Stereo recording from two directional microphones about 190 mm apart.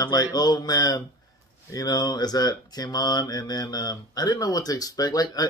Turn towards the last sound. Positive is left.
turn(degrees=20)  # may be behind; listen again after turning